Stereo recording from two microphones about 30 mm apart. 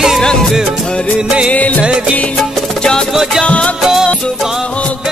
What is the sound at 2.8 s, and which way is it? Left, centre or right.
Music, left.